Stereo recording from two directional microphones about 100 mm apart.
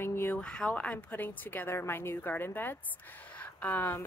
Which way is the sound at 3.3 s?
20° left (ahead or behind).